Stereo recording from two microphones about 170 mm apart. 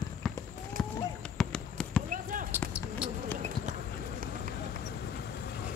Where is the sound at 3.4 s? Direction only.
50° right (ahead or behind).